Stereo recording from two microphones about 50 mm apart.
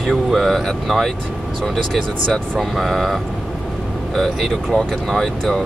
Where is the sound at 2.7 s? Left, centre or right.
Centre.